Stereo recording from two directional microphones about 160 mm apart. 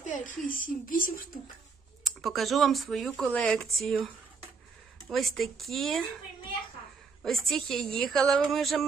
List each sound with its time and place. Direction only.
0.0 s a sound: 50° left (ahead or behind)
0.5 s speech: 60° left (ahead or behind)
2.0 s speech: centre (ahead or behind)
7.2 s speech: centre (ahead or behind)